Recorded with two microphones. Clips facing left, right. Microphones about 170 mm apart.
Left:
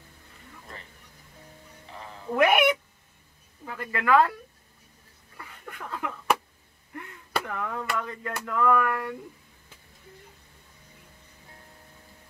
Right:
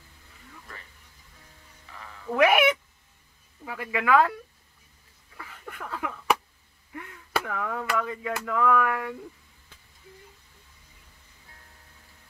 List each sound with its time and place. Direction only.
1.9 s sheep: 30° left (ahead or behind)
2.3 s speech: centre (ahead or behind)
5.4 s a sound: centre (ahead or behind)